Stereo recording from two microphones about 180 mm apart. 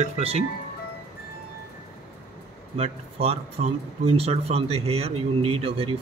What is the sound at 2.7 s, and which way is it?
Speech, 35° right (ahead or behind).